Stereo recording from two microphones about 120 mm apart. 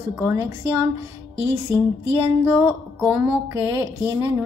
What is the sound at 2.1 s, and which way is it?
A woman's voice, 15° right (ahead or behind).